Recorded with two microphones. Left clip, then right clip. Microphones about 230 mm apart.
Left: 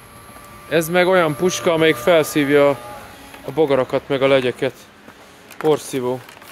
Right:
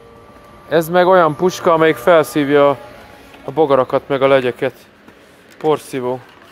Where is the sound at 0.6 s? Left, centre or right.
Centre.